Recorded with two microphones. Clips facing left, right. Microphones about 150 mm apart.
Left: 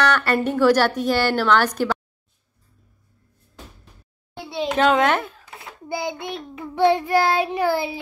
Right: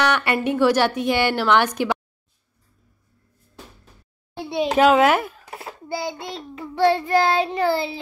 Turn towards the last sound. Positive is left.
turn(degrees=10)  # may be behind; listen again after turning